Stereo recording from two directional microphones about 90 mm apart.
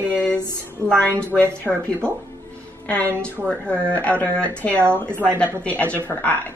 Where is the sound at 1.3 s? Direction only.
15° left (ahead or behind).